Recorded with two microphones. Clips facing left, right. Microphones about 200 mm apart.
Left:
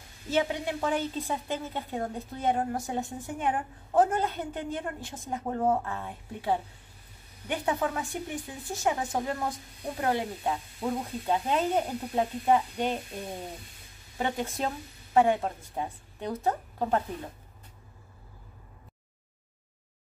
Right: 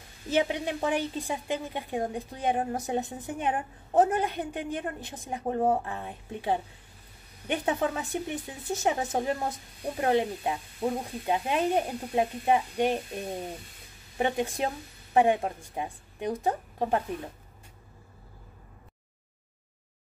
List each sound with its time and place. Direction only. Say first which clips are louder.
0.3 s a woman's voice: right 1 dB; 20° right (ahead or behind)
14.1 s a woman's voice: right 3 dB; 15° right (ahead or behind)